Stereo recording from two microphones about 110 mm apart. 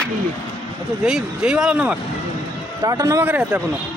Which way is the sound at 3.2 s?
15° right (ahead or behind).